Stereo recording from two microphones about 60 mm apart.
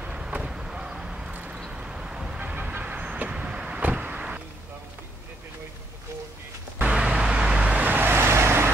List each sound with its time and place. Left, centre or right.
0.0 s vehicle: centre
2.5 s vehicle: right
2.8 s vehicle: centre
6.8 s vehicle: centre; by 8.7 s right